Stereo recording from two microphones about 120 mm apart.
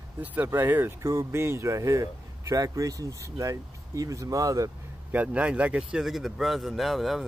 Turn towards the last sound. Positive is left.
turn(degrees=0)  # may be behind; listen again after turning